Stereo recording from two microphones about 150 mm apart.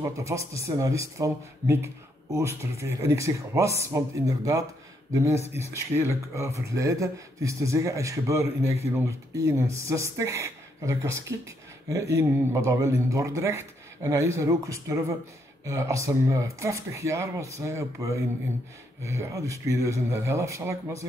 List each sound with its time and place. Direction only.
0.0 s speech: 20° right (ahead or behind)